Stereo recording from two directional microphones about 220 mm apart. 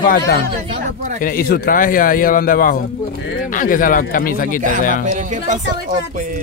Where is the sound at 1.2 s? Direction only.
40° left (ahead or behind).